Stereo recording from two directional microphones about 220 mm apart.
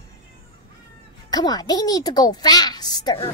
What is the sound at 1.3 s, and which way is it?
A woman's voice, 20° left (ahead or behind).